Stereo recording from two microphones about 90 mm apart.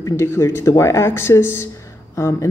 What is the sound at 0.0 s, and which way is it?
A woman's voice, 30° left (ahead or behind).